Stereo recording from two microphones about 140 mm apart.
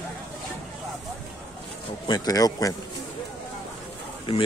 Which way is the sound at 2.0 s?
25° left (ahead or behind).